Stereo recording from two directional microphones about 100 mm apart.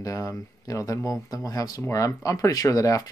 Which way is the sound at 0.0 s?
35° left (ahead or behind).